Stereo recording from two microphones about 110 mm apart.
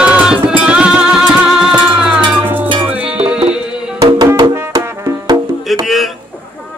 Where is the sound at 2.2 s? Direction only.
45° right (ahead or behind).